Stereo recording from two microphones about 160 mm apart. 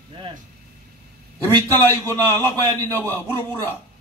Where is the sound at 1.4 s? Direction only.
15° left (ahead or behind).